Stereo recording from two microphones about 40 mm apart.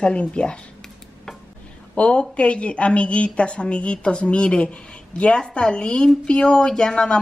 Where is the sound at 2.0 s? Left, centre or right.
Left.